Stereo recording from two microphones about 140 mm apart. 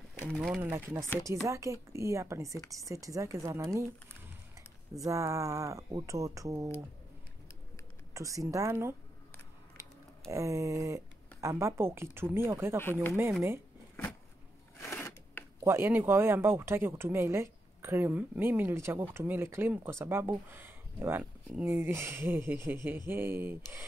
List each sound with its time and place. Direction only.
0.6 s a woman's voice: 15° right (ahead or behind)
4.9 s a woman's voice: 25° right (ahead or behind)
8.1 s a woman's voice: 25° right (ahead or behind)
10.3 s a woman's voice: 20° right (ahead or behind)
14.8 s a sound: 20° left (ahead or behind)
15.6 s speech: 15° right (ahead or behind)